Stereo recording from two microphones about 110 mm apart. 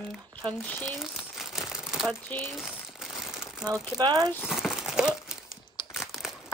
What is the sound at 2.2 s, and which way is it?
Speech, 15° left (ahead or behind).